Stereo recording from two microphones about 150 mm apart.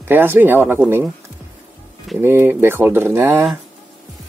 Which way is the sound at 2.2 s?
15° right (ahead or behind).